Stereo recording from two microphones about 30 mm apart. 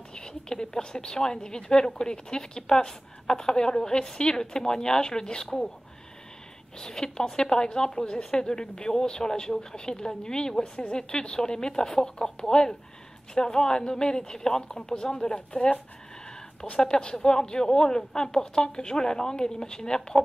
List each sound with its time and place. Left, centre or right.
0.1 s a woman's voice: left
6.8 s a woman's voice: left
15.3 s speech: left
16.8 s a woman's voice: left